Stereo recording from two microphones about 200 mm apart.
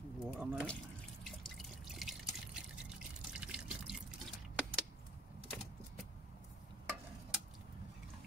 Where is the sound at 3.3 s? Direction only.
5° right (ahead or behind).